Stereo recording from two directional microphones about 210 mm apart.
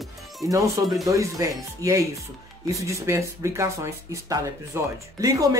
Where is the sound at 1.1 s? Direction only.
15° right (ahead or behind).